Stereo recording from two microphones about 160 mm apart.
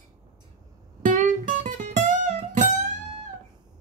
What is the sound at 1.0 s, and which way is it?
Music, 50° right (ahead or behind).